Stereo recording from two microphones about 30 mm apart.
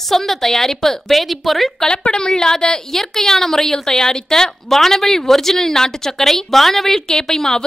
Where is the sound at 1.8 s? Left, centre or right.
Left.